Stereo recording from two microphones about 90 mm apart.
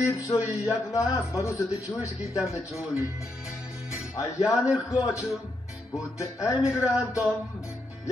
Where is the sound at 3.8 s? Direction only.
10° right (ahead or behind).